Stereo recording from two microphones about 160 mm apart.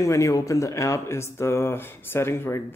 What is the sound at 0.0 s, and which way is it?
Speech, 20° left (ahead or behind).